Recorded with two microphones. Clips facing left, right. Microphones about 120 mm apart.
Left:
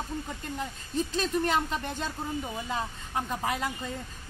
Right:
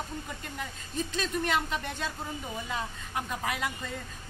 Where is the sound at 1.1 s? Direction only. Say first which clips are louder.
Left 2 dB; 35° left (ahead or behind).